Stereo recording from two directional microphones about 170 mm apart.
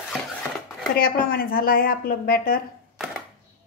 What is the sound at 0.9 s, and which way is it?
A woman's voice, 60° left (ahead or behind).